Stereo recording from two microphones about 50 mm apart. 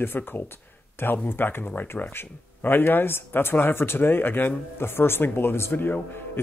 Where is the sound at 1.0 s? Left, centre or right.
Left.